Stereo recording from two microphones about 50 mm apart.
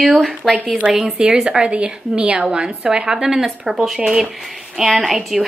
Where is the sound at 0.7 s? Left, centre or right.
Right.